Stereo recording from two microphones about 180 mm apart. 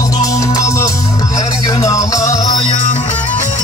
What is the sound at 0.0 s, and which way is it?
Music, 20° left (ahead or behind).